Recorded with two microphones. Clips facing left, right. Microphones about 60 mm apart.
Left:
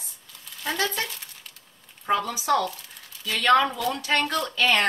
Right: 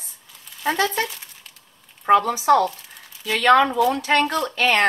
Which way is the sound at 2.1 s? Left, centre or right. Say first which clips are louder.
Right 8 dB; right.